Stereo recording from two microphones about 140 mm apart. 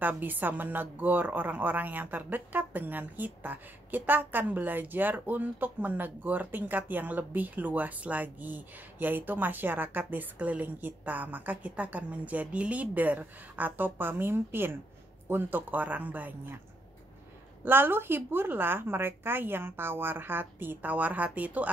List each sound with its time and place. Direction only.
0.0 s a woman's voice: 15° right (ahead or behind)
17.6 s a woman's voice: 15° right (ahead or behind)